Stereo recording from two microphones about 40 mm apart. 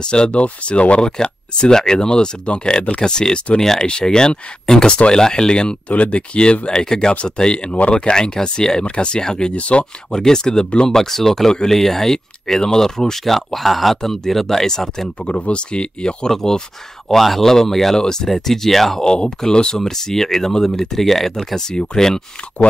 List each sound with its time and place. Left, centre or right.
0.0 s speech: left
1.1 s speech: centre
5.9 s speech: left; by 9.5 s centre
9.5 s speech: left
10.1 s speech: centre
11.0 s speech: centre
15.2 s speech: left; by 19.0 s centre
19.0 s speech: left